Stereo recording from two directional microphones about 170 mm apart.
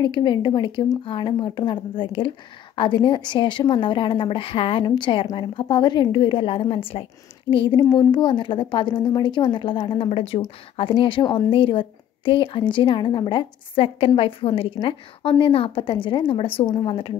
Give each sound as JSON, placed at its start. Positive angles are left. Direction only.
{"t": 0.0, "sound": "a woman's voice", "side_deg": 25}